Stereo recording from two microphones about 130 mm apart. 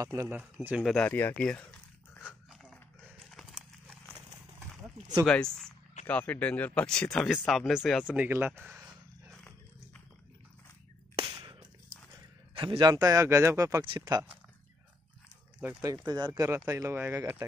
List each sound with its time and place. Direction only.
0.0 s speech: 25° right (ahead or behind)
0.3 s speech: 15° right (ahead or behind)
0.9 s speech: 15° left (ahead or behind)
2.2 s dog: 5° left (ahead or behind)
5.2 s speech: 5° left (ahead or behind); by 8.5 s 15° right (ahead or behind)
12.5 s speech: 35° right (ahead or behind)
15.8 s speech: 30° right (ahead or behind)